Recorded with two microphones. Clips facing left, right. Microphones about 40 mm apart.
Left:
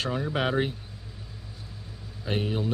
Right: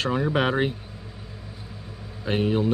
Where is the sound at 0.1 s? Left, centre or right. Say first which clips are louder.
Right 4 dB; right.